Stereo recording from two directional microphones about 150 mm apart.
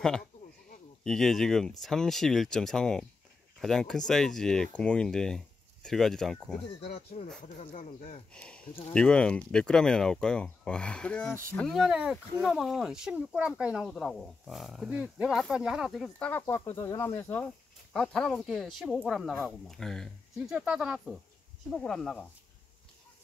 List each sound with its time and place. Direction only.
1.0 s speech: 5° left (ahead or behind)
6.8 s speech: 45° left (ahead or behind)
8.3 s speech: 5° left (ahead or behind)
16.3 s speech: 15° left (ahead or behind)
17.9 s speech: 5° left (ahead or behind)